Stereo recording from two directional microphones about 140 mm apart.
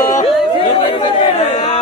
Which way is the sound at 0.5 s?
40° left (ahead or behind).